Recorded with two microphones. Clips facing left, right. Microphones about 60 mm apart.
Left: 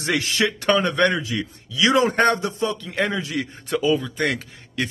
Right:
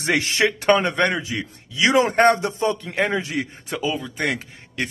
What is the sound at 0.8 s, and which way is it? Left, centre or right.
Speech, right.